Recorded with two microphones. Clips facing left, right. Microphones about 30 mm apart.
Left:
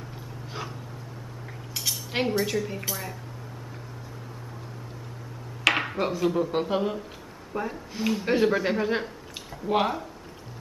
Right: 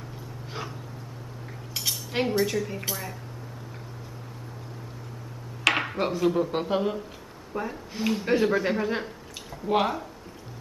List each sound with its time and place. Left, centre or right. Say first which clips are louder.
1.7 s cutlery: even; centre
2.2 s speech: right 1 dB; centre
5.6 s speech: even; centre